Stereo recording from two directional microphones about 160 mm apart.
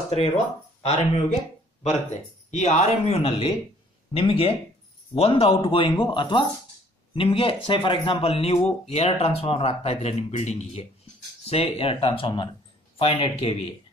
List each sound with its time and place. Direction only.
0.8 s speech: 45° left (ahead or behind)